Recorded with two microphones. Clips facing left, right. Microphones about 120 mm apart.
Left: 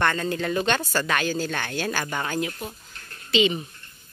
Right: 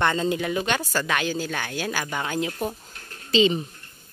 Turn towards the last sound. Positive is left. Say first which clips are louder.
# right 2 dB
turn(degrees=-30)  # may be behind; listen again after turning